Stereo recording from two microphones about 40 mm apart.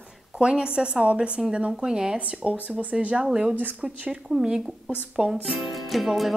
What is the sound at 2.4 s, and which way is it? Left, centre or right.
Speech, right.